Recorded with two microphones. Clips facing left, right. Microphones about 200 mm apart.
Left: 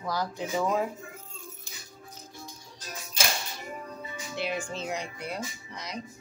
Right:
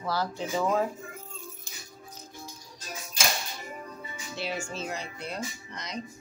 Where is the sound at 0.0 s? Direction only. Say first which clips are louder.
Right 1 dB; 15° left (ahead or behind).